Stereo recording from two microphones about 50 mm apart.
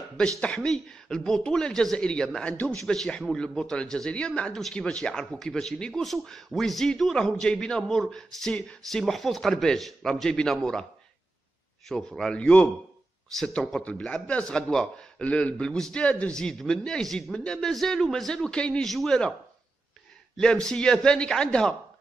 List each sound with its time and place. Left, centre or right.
0.4 s a man's voice: left
0.7 s a man's voice: centre
6.0 s a man's voice: centre
11.9 s a man's voice: centre
12.4 s a man's voice: left
13.6 s a man's voice: centre
16.6 s a man's voice: centre
18.5 s a man's voice: centre
18.9 s a man's voice: centre
20.3 s a man's voice: centre